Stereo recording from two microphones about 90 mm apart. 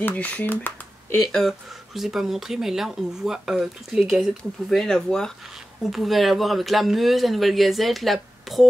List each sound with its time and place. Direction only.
0.0 s speech: 15° left (ahead or behind)
2.0 s speech: 5° right (ahead or behind)